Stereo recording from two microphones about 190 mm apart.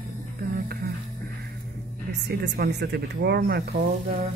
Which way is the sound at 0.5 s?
50° right (ahead or behind).